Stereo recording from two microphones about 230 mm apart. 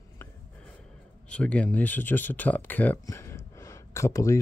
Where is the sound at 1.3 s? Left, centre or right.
Centre.